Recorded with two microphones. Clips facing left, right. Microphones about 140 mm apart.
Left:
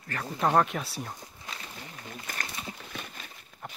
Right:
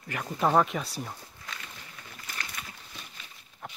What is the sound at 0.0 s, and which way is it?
Speech, 10° right (ahead or behind).